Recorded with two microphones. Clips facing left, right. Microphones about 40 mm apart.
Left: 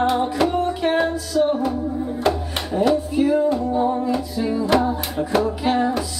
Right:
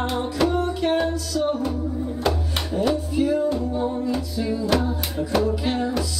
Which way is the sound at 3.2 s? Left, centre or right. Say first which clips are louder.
Left 2 dB; left.